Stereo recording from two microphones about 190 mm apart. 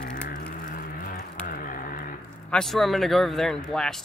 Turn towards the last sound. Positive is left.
turn(degrees=0)  # may be behind; listen again after turning